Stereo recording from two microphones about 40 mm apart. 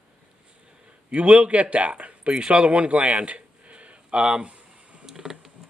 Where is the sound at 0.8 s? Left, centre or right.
Right.